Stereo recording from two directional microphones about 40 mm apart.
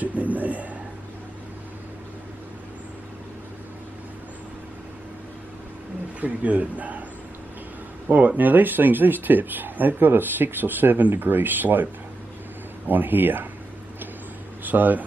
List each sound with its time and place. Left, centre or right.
0.0 s a sound: right
6.2 s speech: right
8.4 s speech: right
14.6 s speech: right